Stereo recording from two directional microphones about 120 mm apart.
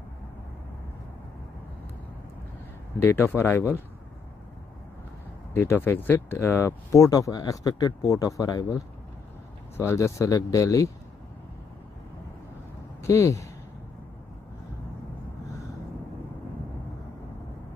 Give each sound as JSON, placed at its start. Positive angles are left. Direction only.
{"t": 3.0, "sound": "speech", "side_deg": 15}
{"t": 5.5, "sound": "speech", "side_deg": 20}
{"t": 13.0, "sound": "speech", "side_deg": 25}